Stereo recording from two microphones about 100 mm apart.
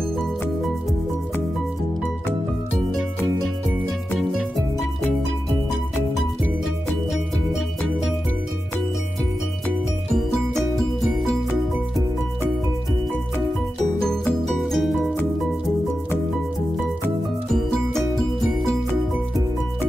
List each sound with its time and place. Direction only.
7.1 s music: centre (ahead or behind)
14.6 s music: centre (ahead or behind)